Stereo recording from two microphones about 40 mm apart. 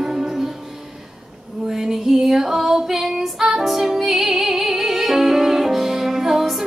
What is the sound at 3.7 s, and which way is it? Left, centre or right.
Music, centre.